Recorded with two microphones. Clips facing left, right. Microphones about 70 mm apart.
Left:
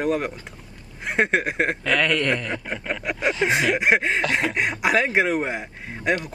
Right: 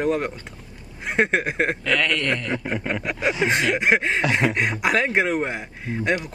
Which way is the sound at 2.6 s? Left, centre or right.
Centre.